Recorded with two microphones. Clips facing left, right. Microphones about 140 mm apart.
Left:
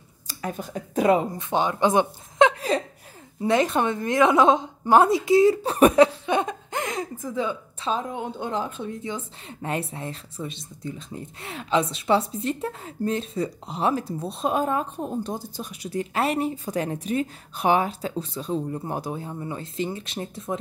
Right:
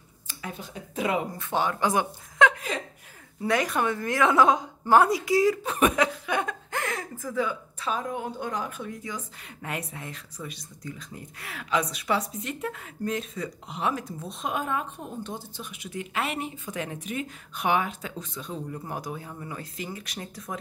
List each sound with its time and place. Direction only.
0.3 s speech: 45° left (ahead or behind)
1.3 s a woman's voice: 20° left (ahead or behind)